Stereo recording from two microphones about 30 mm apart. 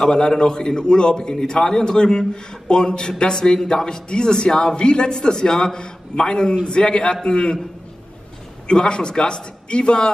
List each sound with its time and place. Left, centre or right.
0.4 s a man's voice: left
8.6 s a man's voice: left